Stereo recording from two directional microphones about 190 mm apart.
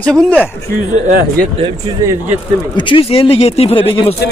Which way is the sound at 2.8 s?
25° left (ahead or behind).